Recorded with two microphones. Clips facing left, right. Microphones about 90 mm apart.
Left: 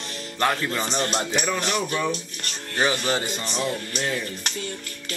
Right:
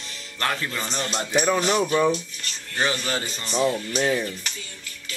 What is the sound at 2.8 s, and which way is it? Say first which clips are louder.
Speech: left 2 dB; 20° left (ahead or behind).